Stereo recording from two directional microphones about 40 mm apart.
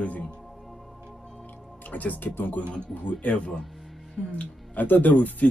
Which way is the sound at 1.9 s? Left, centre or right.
Left.